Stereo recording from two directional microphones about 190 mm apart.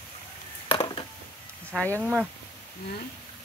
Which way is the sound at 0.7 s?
25° left (ahead or behind).